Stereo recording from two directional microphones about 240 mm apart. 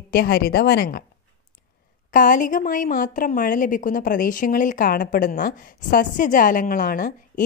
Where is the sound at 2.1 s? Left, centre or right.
Left.